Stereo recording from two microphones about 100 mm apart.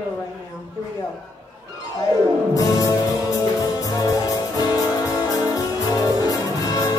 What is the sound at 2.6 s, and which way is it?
Music, 35° left (ahead or behind).